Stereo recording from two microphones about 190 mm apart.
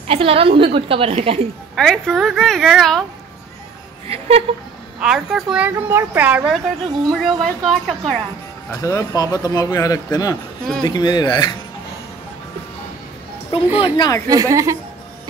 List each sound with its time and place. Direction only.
0.1 s a woman's voice: 30° right (ahead or behind)
1.8 s a woman's voice: centre (ahead or behind)
4.1 s speech: 35° right (ahead or behind)
5.0 s a woman's voice: 5° right (ahead or behind)
8.7 s speech: 15° left (ahead or behind)
13.7 s speech: 25° left (ahead or behind)
14.3 s speech: 15° right (ahead or behind)